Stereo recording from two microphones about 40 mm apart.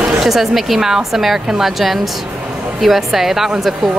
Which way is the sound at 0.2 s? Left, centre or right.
Centre.